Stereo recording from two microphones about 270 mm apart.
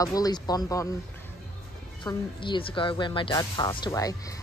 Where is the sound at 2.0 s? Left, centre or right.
Centre.